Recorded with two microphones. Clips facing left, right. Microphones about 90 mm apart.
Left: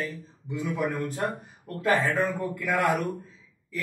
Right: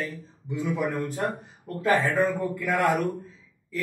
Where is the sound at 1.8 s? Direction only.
10° right (ahead or behind).